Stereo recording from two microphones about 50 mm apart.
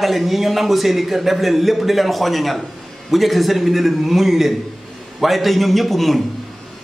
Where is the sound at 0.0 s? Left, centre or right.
Centre.